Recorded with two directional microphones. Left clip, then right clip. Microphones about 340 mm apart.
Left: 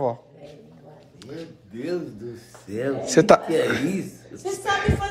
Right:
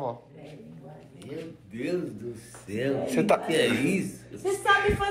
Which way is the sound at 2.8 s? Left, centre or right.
Left.